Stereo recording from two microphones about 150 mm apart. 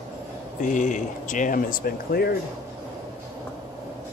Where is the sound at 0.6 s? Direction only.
60° left (ahead or behind); by 2.3 s 80° left.